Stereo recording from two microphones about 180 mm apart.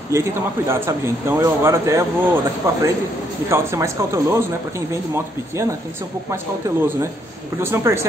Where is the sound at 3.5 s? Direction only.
15° right (ahead or behind).